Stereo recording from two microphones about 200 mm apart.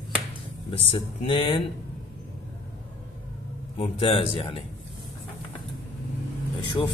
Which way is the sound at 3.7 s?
30° left (ahead or behind).